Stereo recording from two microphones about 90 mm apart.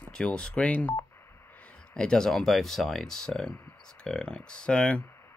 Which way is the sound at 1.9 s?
10° left (ahead or behind).